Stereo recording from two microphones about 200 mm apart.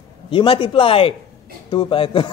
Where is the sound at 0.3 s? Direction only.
25° left (ahead or behind).